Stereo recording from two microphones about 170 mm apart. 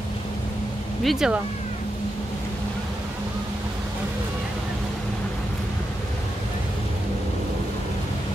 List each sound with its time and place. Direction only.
1.0 s speech: 5° right (ahead or behind)